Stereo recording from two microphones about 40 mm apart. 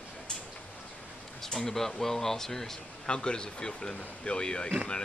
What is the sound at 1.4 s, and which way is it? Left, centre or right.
Speech, centre.